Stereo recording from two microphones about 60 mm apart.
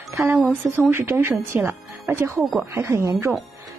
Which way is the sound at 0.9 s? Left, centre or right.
Right.